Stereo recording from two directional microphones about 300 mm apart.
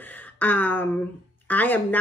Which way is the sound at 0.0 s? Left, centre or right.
Centre.